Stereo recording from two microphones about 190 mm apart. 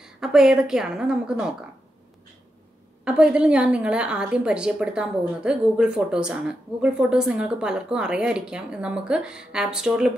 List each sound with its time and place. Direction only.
0.0 s a woman's voice: 5° right (ahead or behind)
3.1 s a woman's voice: 5° right (ahead or behind)